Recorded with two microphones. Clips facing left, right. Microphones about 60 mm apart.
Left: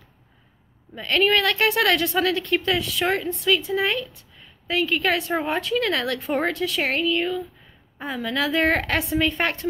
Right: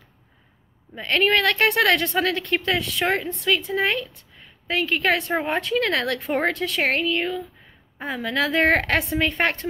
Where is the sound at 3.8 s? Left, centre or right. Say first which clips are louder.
Right 1 dB; right.